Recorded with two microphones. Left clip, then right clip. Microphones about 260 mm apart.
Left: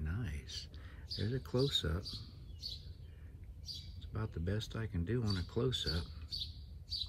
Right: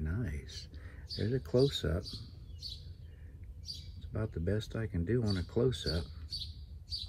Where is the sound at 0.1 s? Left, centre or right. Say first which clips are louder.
Right 3 dB; centre.